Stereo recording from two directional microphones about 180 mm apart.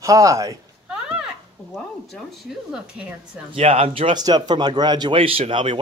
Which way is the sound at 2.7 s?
5° right (ahead or behind).